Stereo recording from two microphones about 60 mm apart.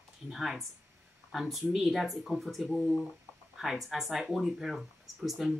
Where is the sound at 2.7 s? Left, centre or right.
Left.